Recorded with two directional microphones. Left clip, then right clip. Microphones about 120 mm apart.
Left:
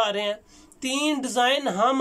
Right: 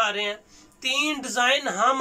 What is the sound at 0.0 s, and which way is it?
Speech, 50° left (ahead or behind).